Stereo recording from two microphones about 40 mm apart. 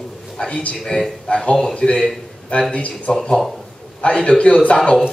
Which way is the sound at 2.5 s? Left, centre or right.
Left.